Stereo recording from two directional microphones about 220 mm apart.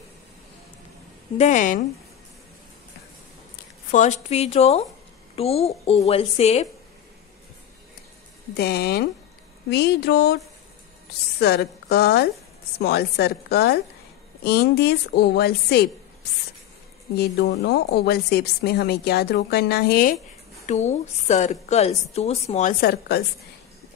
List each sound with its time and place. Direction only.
1.4 s a woman's voice: 35° left (ahead or behind)
3.9 s a woman's voice: 30° left (ahead or behind)
8.5 s a woman's voice: 45° left (ahead or behind)
17.2 s a woman's voice: 50° left (ahead or behind)
20.6 s a woman's voice: 30° left (ahead or behind)